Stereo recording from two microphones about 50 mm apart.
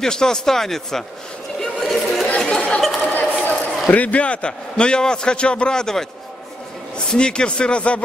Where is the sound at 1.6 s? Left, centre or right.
Centre.